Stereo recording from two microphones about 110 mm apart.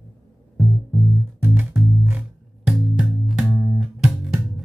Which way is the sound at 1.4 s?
20° right (ahead or behind).